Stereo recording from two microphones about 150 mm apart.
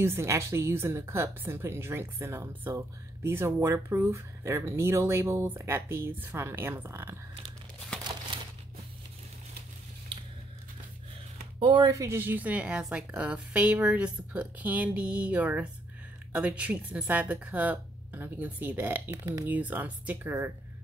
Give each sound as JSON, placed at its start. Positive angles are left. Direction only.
{"t": 0.0, "sound": "speech", "side_deg": -15}
{"t": 11.6, "sound": "speech", "side_deg": -30}